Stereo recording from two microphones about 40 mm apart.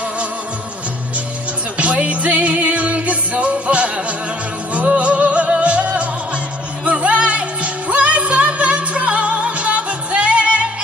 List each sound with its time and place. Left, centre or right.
1.8 s music: right